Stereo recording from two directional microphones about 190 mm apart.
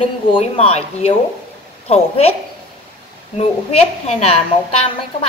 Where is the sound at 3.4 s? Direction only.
35° left (ahead or behind).